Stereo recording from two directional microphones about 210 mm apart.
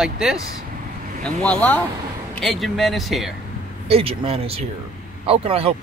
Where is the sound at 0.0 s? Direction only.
5° right (ahead or behind).